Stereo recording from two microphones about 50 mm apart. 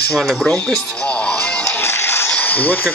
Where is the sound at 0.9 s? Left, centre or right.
Left.